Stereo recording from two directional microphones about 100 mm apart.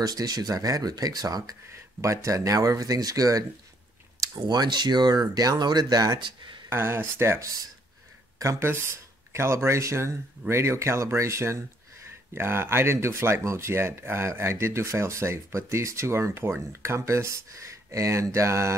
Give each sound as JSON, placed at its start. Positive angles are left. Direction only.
{"t": 0.0, "sound": "speech", "side_deg": -40}
{"t": 6.7, "sound": "speech", "side_deg": -20}